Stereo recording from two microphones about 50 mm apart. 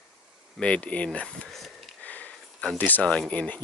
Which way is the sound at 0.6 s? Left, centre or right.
Left.